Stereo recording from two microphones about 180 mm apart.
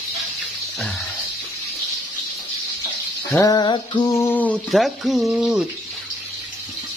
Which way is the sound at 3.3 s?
20° left (ahead or behind).